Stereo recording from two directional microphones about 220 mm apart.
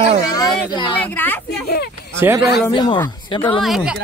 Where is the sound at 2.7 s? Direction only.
20° left (ahead or behind).